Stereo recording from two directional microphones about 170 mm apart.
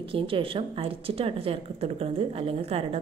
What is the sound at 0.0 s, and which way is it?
Speech, 30° right (ahead or behind).